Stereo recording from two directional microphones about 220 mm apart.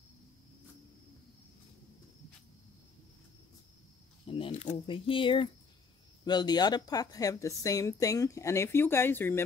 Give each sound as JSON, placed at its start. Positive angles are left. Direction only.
{"t": 4.3, "sound": "a woman's voice", "side_deg": 25}